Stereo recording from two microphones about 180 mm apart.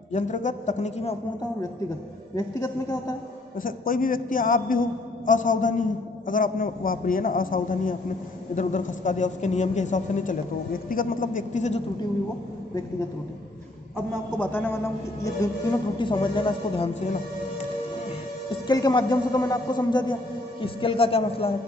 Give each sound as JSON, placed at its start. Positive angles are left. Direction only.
{"t": 0.1, "sound": "a man's voice", "side_deg": 45}
{"t": 2.3, "sound": "speech", "side_deg": 20}
{"t": 3.5, "sound": "a man's voice", "side_deg": 50}
{"t": 13.9, "sound": "a man's voice", "side_deg": 10}
{"t": 18.7, "sound": "a man's voice", "side_deg": 25}